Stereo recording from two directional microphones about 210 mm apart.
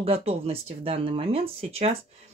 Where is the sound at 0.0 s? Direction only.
30° right (ahead or behind).